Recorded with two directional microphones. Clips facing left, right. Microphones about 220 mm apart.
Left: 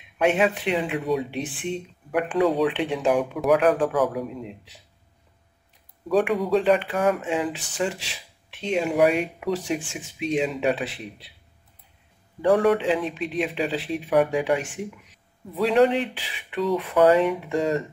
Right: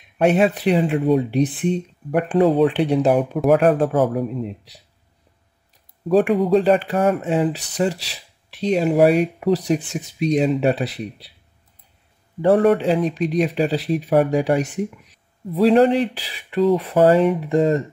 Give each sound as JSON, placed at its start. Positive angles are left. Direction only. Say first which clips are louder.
{"t": 0.2, "sound": "speech", "louder": "right 5 dB", "side_deg": -40}
{"t": 6.0, "sound": "speech", "louder": "right 5 dB", "side_deg": -40}
{"t": 12.4, "sound": "speech", "louder": "right 4 dB", "side_deg": -40}